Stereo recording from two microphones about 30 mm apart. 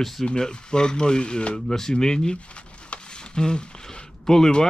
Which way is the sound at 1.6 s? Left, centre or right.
Centre.